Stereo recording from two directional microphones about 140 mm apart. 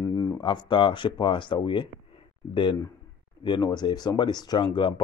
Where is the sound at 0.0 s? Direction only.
25° left (ahead or behind).